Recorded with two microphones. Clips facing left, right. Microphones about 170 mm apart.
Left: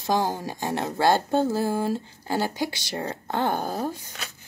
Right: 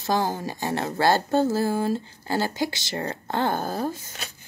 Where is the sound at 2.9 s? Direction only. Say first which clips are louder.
Right 1 dB; 5° left (ahead or behind).